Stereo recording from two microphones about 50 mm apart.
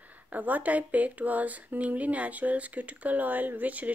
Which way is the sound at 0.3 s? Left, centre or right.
Right.